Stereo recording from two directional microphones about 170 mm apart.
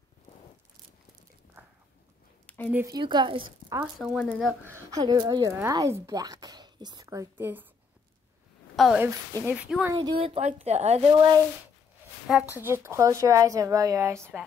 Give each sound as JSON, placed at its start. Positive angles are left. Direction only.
{"t": 2.4, "sound": "a sound", "side_deg": 10}
{"t": 2.9, "sound": "speech", "side_deg": -25}
{"t": 3.8, "sound": "speech", "side_deg": 0}
{"t": 4.6, "sound": "speech", "side_deg": -20}
{"t": 8.7, "sound": "a woman's voice", "side_deg": 0}
{"t": 9.0, "sound": "speech", "side_deg": -15}
{"t": 9.9, "sound": "a woman's voice", "side_deg": -30}
{"t": 11.1, "sound": "speech", "side_deg": -25}
{"t": 12.3, "sound": "speech", "side_deg": -5}